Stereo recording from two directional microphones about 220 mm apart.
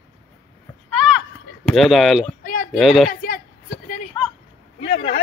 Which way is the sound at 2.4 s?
40° left (ahead or behind).